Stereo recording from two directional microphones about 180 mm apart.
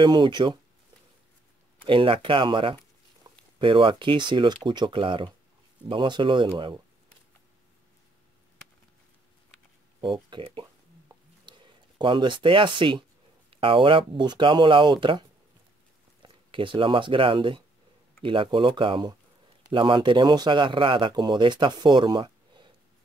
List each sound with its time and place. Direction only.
0.0 s speech: 25° right (ahead or behind)
1.9 s speech: 30° right (ahead or behind)
9.9 s a sound: 25° right (ahead or behind)
13.5 s speech: 30° right (ahead or behind)